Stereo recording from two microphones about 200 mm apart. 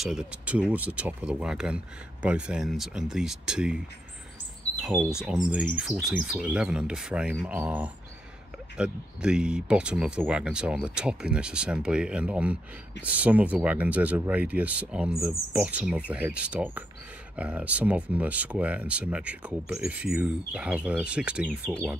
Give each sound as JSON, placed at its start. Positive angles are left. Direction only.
{"t": 0.0, "sound": "speech", "side_deg": -5}
{"t": 4.8, "sound": "speech", "side_deg": -5}